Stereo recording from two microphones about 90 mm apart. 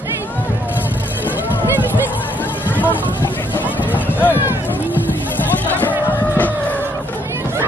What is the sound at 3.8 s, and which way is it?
Run, 20° left (ahead or behind).